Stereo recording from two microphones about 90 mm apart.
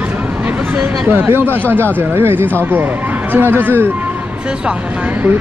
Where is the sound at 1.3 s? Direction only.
25° right (ahead or behind).